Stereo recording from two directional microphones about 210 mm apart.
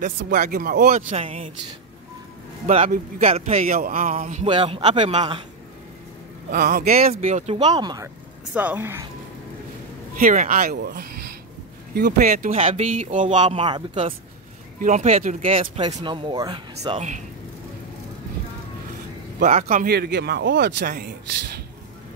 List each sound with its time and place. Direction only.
0.0 s speech: 40° right (ahead or behind)
1.1 s speech: 25° right (ahead or behind)
2.6 s a man's voice: 35° right (ahead or behind)
4.5 s speech: 25° right (ahead or behind)
6.5 s speech: 45° right (ahead or behind)
6.9 s a woman's voice: 30° right (ahead or behind); by 9.0 s 10° right (ahead or behind)
10.1 s speech: 40° right (ahead or behind)
12.5 s a man's voice: 30° right (ahead or behind)
19.4 s speech: 40° right (ahead or behind)